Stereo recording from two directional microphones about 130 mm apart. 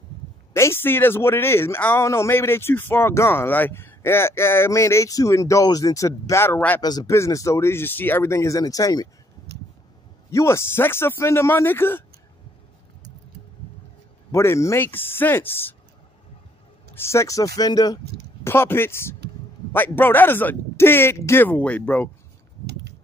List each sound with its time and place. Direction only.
0.5 s speech: 20° left (ahead or behind)
6.8 s speech: 30° left (ahead or behind)
10.3 s speech: 20° left (ahead or behind)
14.3 s speech: 20° left (ahead or behind)
16.9 s speech: 20° left (ahead or behind)
18.5 s speech: 20° left (ahead or behind)